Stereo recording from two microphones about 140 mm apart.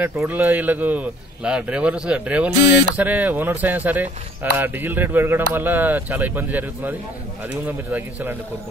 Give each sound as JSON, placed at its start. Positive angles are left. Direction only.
{"t": 0.0, "sound": "speech", "side_deg": -10}